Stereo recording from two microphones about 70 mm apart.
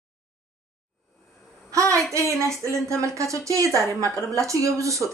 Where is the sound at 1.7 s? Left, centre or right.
Right.